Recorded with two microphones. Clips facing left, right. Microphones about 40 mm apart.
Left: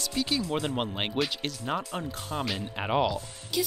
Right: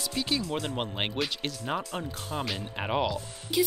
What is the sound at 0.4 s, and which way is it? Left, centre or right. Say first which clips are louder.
Speech: left 2 dB; centre.